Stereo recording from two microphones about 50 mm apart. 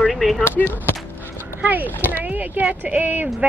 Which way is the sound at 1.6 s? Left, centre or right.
Right.